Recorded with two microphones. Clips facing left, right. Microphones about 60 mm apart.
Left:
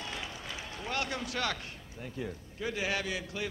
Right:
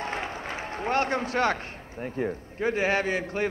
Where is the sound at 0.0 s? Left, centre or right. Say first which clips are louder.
Right 9 dB; right.